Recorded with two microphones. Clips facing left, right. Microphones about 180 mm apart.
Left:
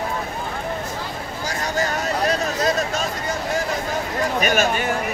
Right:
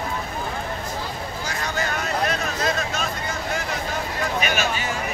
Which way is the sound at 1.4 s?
40° left (ahead or behind).